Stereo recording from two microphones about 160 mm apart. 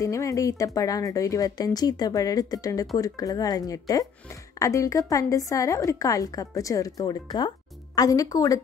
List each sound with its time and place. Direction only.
0.0 s a woman's voice: 20° left (ahead or behind)